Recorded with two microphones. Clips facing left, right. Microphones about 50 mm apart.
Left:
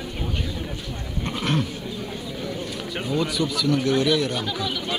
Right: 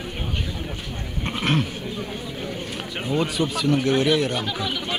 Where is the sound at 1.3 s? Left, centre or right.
Right.